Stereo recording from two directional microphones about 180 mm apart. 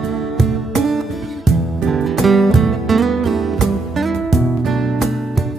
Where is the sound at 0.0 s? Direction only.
Centre (ahead or behind).